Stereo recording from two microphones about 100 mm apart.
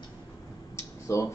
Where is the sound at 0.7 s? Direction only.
30° left (ahead or behind).